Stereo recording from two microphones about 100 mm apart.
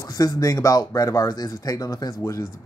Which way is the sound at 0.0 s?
35° left (ahead or behind).